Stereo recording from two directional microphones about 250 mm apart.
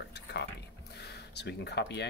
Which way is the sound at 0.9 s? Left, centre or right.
Left.